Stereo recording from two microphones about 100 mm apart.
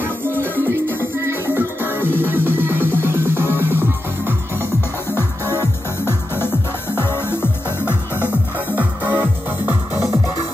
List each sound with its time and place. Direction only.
0.4 s music: 25° right (ahead or behind)
5.1 s music: 25° left (ahead or behind)
8.2 s music: 15° right (ahead or behind)